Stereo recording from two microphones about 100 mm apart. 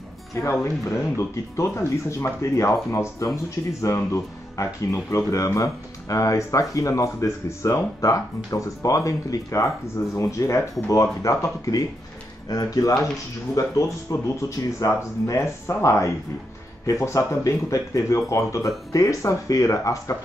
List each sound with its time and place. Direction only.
0.3 s speech: 30° left (ahead or behind)